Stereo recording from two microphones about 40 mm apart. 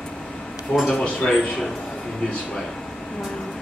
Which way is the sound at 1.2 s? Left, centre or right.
Centre.